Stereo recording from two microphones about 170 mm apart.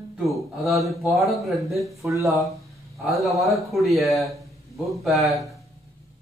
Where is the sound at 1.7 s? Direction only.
15° right (ahead or behind).